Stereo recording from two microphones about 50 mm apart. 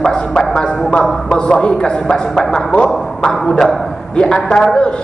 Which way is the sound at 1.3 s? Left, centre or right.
Centre.